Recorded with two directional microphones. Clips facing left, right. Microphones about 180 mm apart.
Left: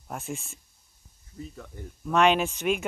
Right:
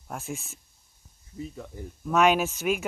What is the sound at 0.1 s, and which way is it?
Speech, centre (ahead or behind).